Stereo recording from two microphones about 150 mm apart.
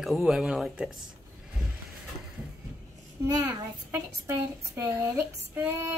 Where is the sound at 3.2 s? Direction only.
25° right (ahead or behind).